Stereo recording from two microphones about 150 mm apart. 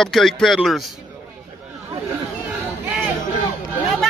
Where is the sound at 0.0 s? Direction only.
Centre (ahead or behind).